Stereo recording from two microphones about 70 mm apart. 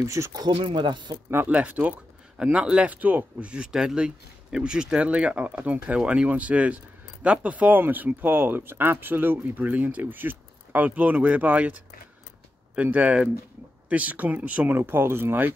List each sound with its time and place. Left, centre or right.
0.0 s speech: right
0.4 s speech: right
1.5 s a man's voice: centre
12.7 s speech: right